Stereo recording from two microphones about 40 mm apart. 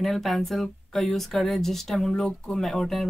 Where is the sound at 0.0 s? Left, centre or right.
Centre.